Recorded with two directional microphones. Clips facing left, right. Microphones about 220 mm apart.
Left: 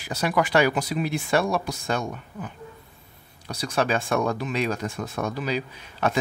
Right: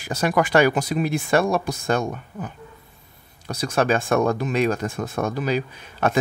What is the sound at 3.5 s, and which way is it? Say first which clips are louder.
Speech: right 4 dB; 50° right (ahead or behind).